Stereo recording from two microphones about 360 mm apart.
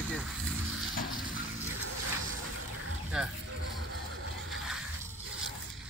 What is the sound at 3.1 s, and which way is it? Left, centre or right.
Speech, centre.